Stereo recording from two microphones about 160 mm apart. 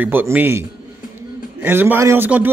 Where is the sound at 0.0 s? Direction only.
10° right (ahead or behind).